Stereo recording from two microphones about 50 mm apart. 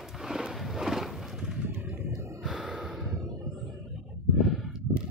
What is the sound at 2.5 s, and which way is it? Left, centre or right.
Gasp, centre.